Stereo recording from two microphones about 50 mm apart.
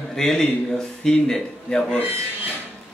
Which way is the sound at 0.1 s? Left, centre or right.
Centre.